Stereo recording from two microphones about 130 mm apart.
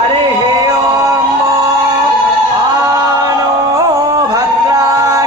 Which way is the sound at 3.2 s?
25° right (ahead or behind).